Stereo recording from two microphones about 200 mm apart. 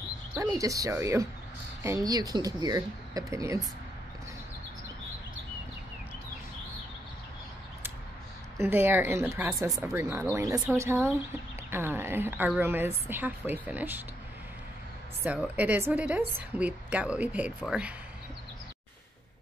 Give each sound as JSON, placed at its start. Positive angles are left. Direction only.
{"t": 0.3, "sound": "a woman's voice", "side_deg": -15}
{"t": 8.5, "sound": "a woman's voice", "side_deg": -10}
{"t": 15.2, "sound": "a woman's voice", "side_deg": -5}